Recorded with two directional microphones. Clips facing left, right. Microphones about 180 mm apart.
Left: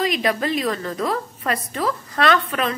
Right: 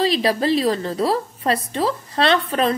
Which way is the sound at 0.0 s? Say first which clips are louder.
Right 3 dB; 30° right (ahead or behind).